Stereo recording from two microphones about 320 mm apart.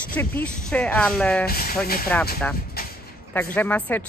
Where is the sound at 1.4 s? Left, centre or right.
Left.